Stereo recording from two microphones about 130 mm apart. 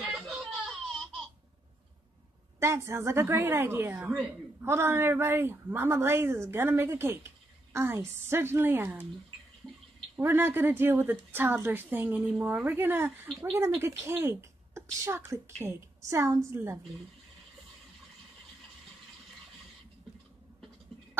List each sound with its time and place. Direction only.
0.0 s baby cry: centre (ahead or behind)
2.6 s a woman's voice: 20° right (ahead or behind)
10.1 s a woman's voice: 15° right (ahead or behind)